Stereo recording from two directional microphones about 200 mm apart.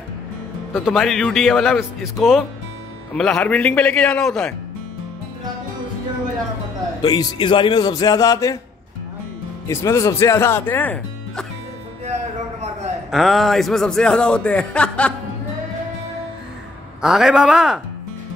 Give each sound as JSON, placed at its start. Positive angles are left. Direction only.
{"t": 0.8, "sound": "speech", "side_deg": 0}
{"t": 7.0, "sound": "speech", "side_deg": 20}
{"t": 9.7, "sound": "speech", "side_deg": 15}
{"t": 13.1, "sound": "speech", "side_deg": 0}
{"t": 17.0, "sound": "speech", "side_deg": 0}